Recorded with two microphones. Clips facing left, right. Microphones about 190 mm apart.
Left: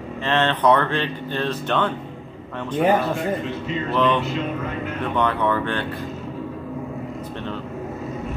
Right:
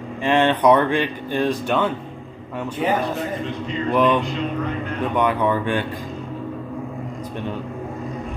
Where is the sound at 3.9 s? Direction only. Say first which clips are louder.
Right 3 dB; 15° right (ahead or behind).